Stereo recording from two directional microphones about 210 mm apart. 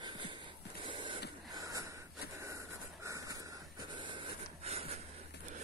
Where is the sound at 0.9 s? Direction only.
25° right (ahead or behind).